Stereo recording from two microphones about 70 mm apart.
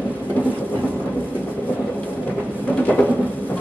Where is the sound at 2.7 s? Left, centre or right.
Left.